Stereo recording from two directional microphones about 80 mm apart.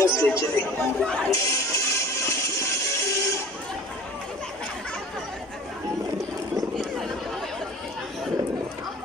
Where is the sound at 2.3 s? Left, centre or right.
Left.